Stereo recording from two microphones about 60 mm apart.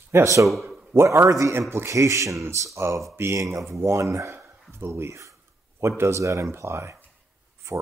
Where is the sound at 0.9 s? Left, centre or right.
Right.